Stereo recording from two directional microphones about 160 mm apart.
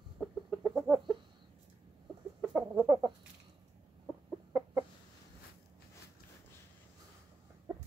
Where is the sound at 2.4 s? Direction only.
10° right (ahead or behind).